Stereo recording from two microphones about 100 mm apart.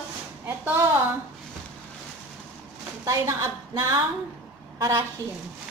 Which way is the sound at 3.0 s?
30° right (ahead or behind).